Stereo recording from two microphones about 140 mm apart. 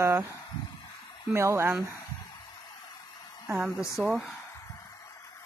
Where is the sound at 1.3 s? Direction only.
20° right (ahead or behind).